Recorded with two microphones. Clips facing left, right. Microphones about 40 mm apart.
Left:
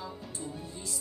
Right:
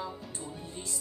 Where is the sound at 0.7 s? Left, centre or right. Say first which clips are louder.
Even; right.